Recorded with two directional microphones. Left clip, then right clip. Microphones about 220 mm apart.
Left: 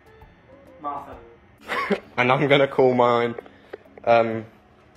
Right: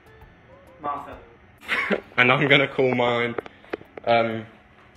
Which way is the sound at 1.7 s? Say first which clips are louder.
Right 2 dB; 15° left (ahead or behind).